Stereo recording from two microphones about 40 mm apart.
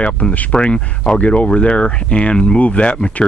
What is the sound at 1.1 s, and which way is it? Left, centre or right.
Speech, left.